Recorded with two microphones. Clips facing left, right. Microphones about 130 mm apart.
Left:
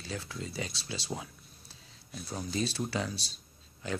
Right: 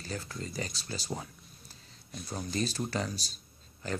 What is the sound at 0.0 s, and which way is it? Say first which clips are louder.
Speech: even; centre (ahead or behind).